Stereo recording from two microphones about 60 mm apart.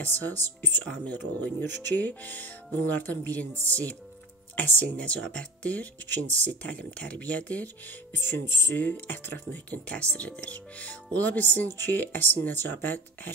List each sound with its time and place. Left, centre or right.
0.0 s speech: left
1.8 s speech: left
9.7 s speech: centre